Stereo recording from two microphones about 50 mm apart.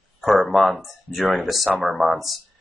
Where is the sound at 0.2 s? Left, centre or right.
Centre.